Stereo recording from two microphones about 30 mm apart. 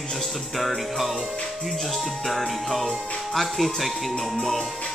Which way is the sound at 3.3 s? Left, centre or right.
Centre.